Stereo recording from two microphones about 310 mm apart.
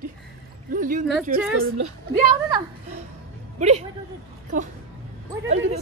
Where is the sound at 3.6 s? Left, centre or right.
Right.